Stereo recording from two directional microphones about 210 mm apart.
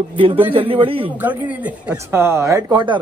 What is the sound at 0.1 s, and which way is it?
A man's voice, 25° right (ahead or behind).